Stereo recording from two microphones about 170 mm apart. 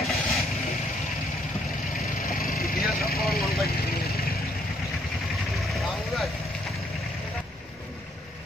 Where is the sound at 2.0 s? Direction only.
60° left (ahead or behind).